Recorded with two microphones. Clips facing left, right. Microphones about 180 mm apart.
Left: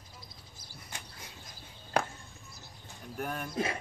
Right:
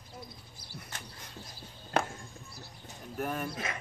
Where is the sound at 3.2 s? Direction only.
Centre (ahead or behind).